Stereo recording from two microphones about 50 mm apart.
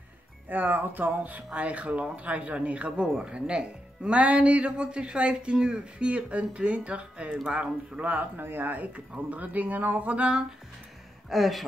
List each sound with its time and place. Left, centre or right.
0.5 s speech: right
8.4 s speech: right
11.2 s speech: centre